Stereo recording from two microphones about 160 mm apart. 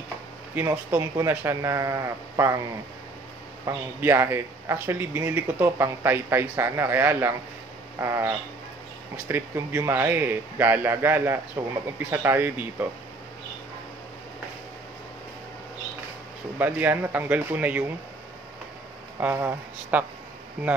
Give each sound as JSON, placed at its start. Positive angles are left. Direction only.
{"t": 0.6, "sound": "a man's voice", "side_deg": -15}
{"t": 3.6, "sound": "a man's voice", "side_deg": -15}
{"t": 16.5, "sound": "a man's voice", "side_deg": -10}
{"t": 19.1, "sound": "a man's voice", "side_deg": -10}